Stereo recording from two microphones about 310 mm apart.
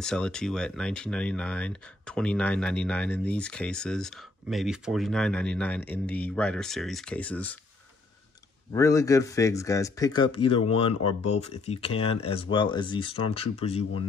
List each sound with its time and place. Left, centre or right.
0.0 s speech: centre
8.7 s speech: centre